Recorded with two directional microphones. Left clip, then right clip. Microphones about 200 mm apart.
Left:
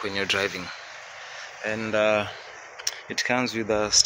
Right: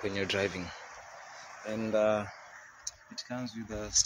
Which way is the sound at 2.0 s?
5° left (ahead or behind).